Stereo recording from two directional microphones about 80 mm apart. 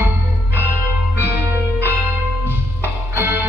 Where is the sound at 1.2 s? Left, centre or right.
Right.